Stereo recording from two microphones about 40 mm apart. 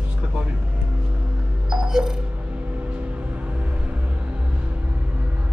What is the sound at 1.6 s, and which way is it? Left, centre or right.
Sonar, centre.